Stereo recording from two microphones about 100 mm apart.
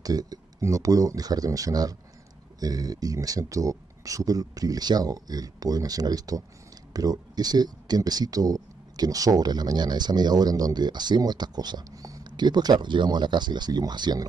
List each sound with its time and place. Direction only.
0.0 s speech: 40° right (ahead or behind)